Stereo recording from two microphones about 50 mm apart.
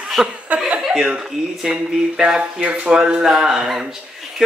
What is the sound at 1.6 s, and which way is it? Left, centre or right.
Speech, centre.